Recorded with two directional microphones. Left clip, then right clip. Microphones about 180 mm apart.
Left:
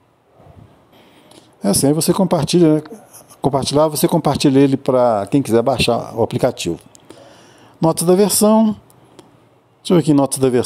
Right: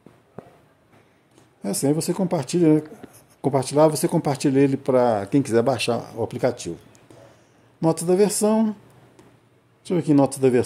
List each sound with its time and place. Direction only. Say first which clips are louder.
1.3 s speech: left 11 dB; 30° left (ahead or behind)
7.8 s speech: left 5 dB; 30° left (ahead or behind)
9.8 s speech: left 5 dB; 30° left (ahead or behind)